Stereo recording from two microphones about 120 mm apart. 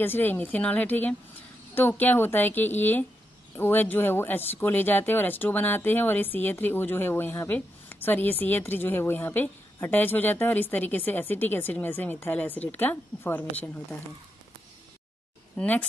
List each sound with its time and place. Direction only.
0.0 s speech: 15° left (ahead or behind)
15.5 s speech: 10° left (ahead or behind)